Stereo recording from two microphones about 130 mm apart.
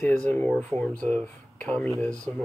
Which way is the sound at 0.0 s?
10° left (ahead or behind).